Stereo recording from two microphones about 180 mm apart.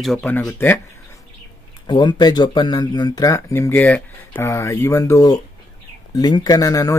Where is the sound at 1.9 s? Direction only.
25° left (ahead or behind).